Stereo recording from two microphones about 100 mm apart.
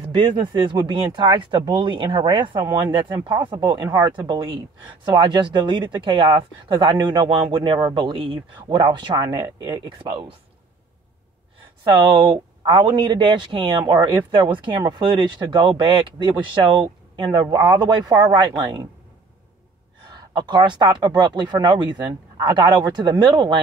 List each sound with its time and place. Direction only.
0.2 s speech: 50° right (ahead or behind)
11.8 s speech: 55° right (ahead or behind)
20.3 s speech: 50° right (ahead or behind)